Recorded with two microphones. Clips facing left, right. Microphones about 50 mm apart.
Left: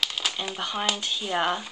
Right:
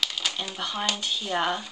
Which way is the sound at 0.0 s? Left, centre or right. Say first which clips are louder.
Left 1 dB; centre.